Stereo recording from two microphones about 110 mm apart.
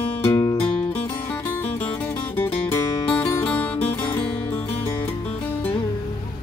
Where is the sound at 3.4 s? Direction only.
15° left (ahead or behind).